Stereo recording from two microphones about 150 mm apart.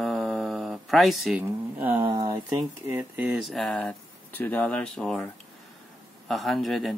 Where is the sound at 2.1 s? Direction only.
20° right (ahead or behind).